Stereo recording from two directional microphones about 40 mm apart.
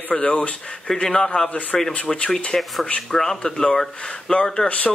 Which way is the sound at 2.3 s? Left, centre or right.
Centre.